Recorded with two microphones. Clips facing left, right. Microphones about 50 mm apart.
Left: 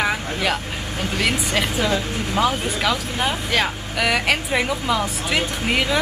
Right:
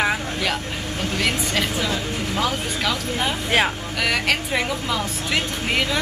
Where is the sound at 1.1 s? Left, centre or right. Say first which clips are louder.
Left 2 dB; centre.